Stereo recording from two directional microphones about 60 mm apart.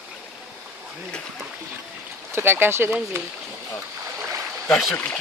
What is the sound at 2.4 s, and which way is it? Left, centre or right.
Speech, right.